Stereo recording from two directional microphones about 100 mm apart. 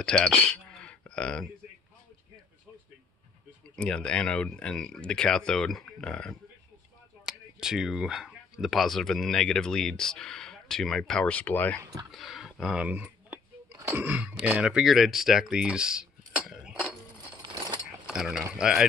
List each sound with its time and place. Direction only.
0.0 s speech: 5° left (ahead or behind)
3.7 s speech: 10° left (ahead or behind)
7.2 s speech: 5° right (ahead or behind); by 11.8 s 15° left (ahead or behind)
12.1 s speech: centre (ahead or behind)
12.8 s speech: 15° right (ahead or behind)
18.0 s speech: 5° right (ahead or behind)